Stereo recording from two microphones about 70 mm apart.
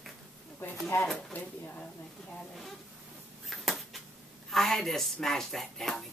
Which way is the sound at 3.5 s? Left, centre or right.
Centre.